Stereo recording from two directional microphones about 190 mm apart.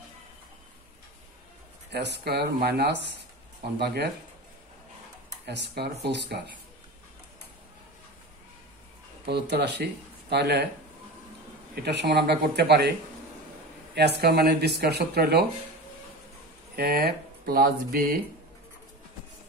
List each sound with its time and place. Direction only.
1.9 s speech: 60° right (ahead or behind)
5.5 s speech: 65° right (ahead or behind)
9.2 s speech: 60° right (ahead or behind)
11.7 s speech: 60° right (ahead or behind)
13.9 s speech: 55° right (ahead or behind)
16.7 s speech: 55° right (ahead or behind)